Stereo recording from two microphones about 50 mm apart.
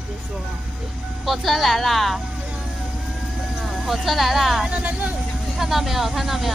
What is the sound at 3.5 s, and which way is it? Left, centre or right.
Speech, centre.